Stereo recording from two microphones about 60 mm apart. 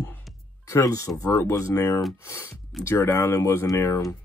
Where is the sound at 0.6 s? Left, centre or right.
Left.